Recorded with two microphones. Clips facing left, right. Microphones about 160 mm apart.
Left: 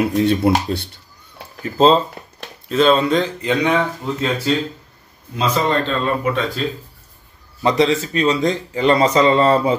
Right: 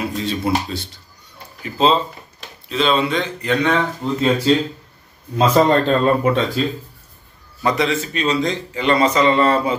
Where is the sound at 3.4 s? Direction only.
20° left (ahead or behind).